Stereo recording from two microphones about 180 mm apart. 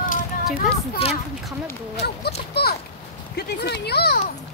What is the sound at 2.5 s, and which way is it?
Speech, 60° left (ahead or behind).